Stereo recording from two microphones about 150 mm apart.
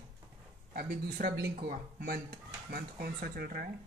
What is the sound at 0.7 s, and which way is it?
Speech, 90° right.